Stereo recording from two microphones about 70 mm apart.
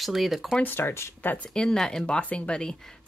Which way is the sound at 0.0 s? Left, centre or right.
Centre.